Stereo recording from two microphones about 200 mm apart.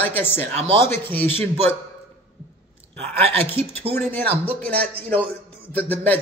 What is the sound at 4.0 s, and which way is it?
Speech, 10° left (ahead or behind).